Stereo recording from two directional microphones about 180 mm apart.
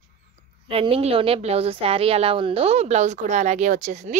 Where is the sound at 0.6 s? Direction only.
30° right (ahead or behind).